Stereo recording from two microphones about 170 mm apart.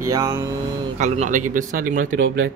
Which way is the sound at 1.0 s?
45° right (ahead or behind).